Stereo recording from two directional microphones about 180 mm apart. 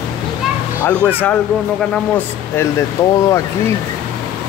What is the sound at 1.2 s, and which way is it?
Speech, 10° left (ahead or behind).